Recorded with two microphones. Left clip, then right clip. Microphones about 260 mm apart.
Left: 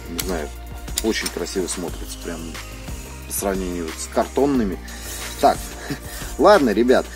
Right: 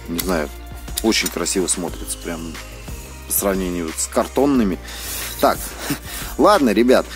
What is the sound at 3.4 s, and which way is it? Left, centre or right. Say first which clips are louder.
Speech: right 3 dB; right.